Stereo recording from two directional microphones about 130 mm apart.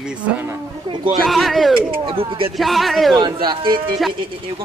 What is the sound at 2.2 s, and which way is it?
Speech, 45° right (ahead or behind).